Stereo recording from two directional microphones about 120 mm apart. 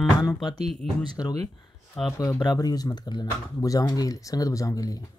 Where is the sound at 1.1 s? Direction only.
30° left (ahead or behind).